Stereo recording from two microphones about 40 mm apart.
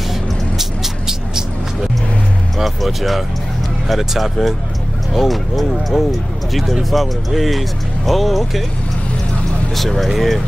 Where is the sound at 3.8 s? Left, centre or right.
Centre.